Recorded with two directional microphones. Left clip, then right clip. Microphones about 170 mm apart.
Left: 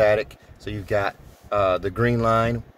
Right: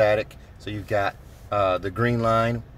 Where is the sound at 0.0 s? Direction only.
10° left (ahead or behind).